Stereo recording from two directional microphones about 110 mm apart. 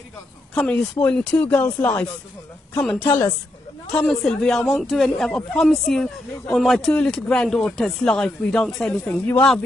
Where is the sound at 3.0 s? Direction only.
20° left (ahead or behind).